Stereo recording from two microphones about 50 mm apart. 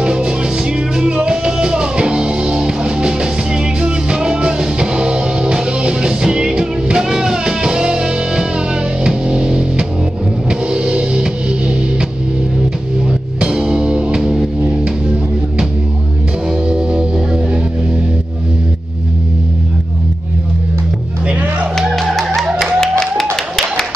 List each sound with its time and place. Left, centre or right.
0.0 s music: centre
13.4 s music: centre
16.6 s music: centre
21.3 s music: right
21.9 s music: centre
22.8 s a sound: centre